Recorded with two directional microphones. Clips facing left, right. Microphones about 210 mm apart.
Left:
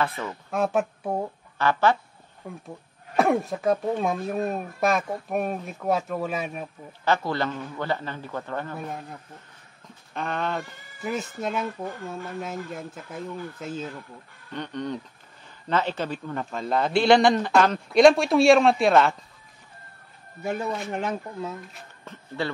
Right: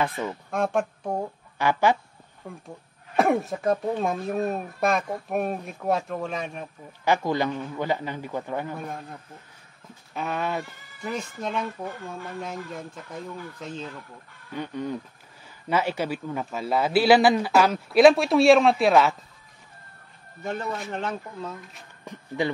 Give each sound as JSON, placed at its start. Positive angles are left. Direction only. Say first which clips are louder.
{"t": 0.0, "sound": "a man's voice", "louder": "right 1 dB", "side_deg": -15}
{"t": 0.5, "sound": "speech", "louder": "left 2 dB", "side_deg": 5}
{"t": 1.6, "sound": "a man's voice", "louder": "even", "side_deg": -15}
{"t": 3.2, "sound": "a man's voice", "louder": "even", "side_deg": 0}
{"t": 7.1, "sound": "a man's voice", "louder": "right 1 dB", "side_deg": -15}
{"t": 8.7, "sound": "a man's voice", "louder": "even", "side_deg": 5}
{"t": 10.1, "sound": "a man's voice", "louder": "even", "side_deg": -5}
{"t": 11.0, "sound": "a man's voice", "louder": "left 2 dB", "side_deg": 5}
{"t": 14.5, "sound": "a man's voice", "louder": "right 1 dB", "side_deg": -5}
{"t": 20.4, "sound": "a man's voice", "louder": "left 2 dB", "side_deg": 5}
{"t": 22.0, "sound": "speech", "louder": "right 3 dB", "side_deg": -15}